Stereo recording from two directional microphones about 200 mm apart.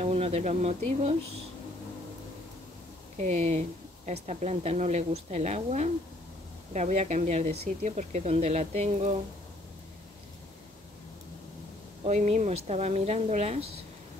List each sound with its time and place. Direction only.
0.0 s speech: 30° right (ahead or behind)
3.2 s speech: 35° right (ahead or behind)
12.0 s speech: 35° right (ahead or behind)